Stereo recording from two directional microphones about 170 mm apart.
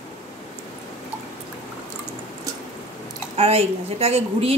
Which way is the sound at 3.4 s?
35° right (ahead or behind).